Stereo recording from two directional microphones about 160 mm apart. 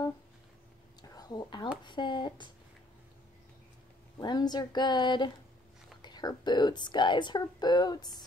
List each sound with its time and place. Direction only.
1.0 s whispering: 25° left (ahead or behind)
1.9 s speech: 30° left (ahead or behind)
4.2 s speech: 25° left (ahead or behind)